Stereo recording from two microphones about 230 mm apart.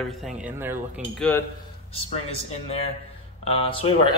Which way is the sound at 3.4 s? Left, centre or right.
Left.